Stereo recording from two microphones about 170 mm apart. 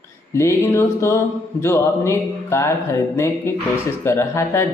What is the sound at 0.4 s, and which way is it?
Speech, 15° left (ahead or behind).